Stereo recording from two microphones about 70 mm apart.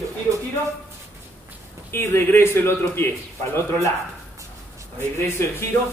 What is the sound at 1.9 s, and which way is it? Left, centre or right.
A man's voice, left.